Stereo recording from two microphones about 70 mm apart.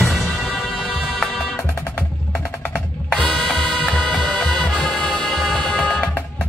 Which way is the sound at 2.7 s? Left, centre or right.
Centre.